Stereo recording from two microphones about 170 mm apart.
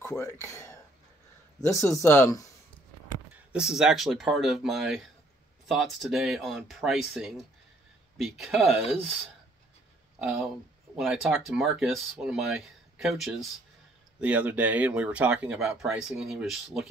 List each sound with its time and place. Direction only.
0.0 s speech: 15° left (ahead or behind)
3.5 s speech: 5° right (ahead or behind)
11.0 s speech: centre (ahead or behind)